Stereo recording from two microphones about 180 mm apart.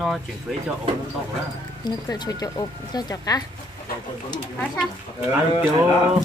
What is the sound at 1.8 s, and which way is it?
Speech, 25° left (ahead or behind).